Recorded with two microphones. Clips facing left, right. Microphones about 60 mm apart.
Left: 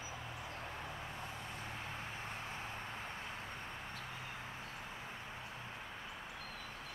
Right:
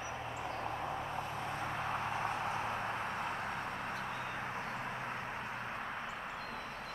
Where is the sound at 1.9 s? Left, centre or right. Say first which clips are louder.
Right 9 dB; right.